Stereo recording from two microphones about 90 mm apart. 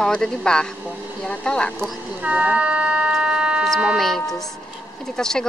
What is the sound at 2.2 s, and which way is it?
Speech, 15° right (ahead or behind).